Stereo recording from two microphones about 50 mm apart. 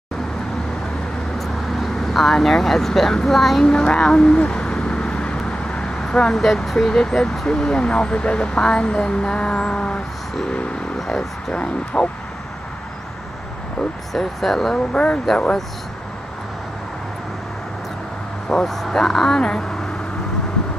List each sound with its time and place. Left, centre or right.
1.4 s speech: centre
3.6 s speech: centre
4.4 s a sound: centre
5.7 s vehicle: left
6.3 s speech: centre
11.1 s speech: centre
14.1 s speech: centre
14.9 s speech: left
18.5 s speech: centre